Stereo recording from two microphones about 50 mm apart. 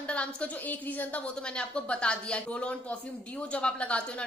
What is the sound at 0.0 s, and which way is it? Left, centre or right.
A woman's voice, left.